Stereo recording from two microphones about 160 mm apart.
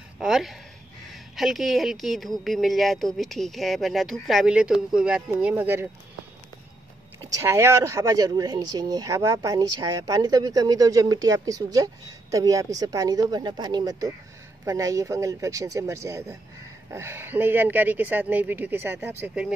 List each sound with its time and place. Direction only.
0.2 s a woman's voice: centre (ahead or behind)
7.2 s speech: 20° right (ahead or behind)